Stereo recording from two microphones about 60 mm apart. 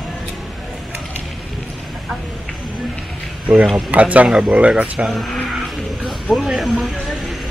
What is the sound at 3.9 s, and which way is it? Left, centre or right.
Speech, right.